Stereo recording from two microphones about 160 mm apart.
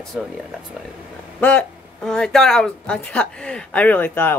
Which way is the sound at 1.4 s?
10° left (ahead or behind).